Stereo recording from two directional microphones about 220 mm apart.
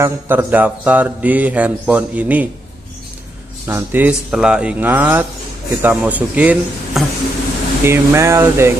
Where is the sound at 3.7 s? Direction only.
10° right (ahead or behind).